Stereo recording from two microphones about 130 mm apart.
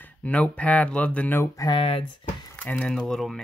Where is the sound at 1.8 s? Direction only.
50° left (ahead or behind).